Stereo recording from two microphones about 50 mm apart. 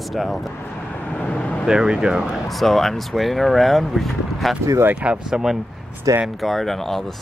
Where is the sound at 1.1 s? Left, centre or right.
Left.